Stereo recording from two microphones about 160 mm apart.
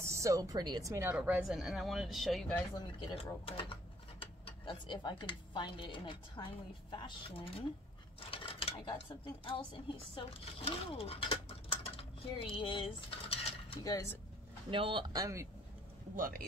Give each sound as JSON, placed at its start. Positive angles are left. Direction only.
{"t": 0.0, "sound": "speech", "side_deg": -20}
{"t": 1.1, "sound": "speech", "side_deg": -5}
{"t": 2.7, "sound": "speech", "side_deg": 25}
{"t": 10.6, "sound": "a sound", "side_deg": 35}
{"t": 14.7, "sound": "speech", "side_deg": -30}
{"t": 16.2, "sound": "speech", "side_deg": -60}